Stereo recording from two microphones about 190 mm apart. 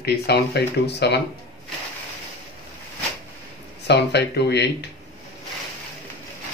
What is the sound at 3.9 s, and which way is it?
Speech, 60° left (ahead or behind).